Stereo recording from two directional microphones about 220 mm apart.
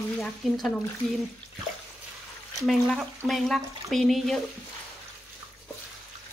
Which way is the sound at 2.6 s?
Centre (ahead or behind).